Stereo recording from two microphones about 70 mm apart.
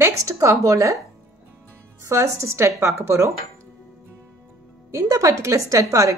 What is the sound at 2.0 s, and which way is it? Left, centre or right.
A woman's voice, right.